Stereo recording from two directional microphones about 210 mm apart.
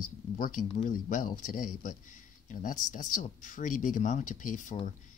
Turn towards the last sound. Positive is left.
turn(degrees=35)  # may be behind; listen again after turning